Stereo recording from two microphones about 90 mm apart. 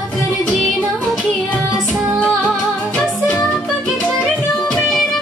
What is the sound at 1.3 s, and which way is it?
Music, 20° left (ahead or behind).